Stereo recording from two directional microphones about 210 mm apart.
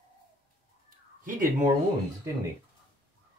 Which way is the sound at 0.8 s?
40° right (ahead or behind).